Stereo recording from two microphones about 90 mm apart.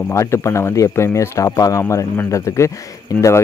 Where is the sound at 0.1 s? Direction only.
35° left (ahead or behind).